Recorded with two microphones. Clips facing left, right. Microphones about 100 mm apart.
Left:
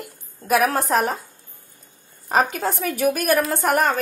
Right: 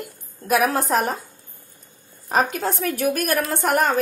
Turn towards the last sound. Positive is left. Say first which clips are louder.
# even
turn(degrees=0)  # may be behind; listen again after turning